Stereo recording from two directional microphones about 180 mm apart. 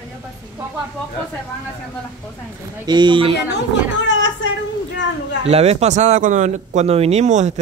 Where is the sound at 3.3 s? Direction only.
80° left.